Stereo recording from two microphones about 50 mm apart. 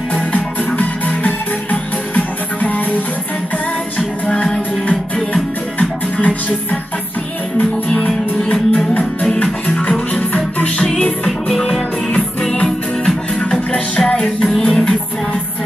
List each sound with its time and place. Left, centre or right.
0.1 s music: left
4.8 s music: left
8.4 s music: left
11.2 s music: centre